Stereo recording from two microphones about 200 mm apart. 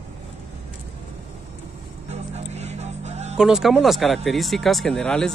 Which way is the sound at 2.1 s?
35° right (ahead or behind).